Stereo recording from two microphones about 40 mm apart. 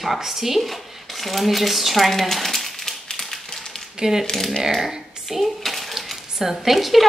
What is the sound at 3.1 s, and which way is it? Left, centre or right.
Tap, centre.